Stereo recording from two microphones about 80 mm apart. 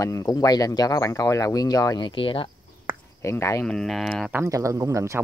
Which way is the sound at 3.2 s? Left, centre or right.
Left.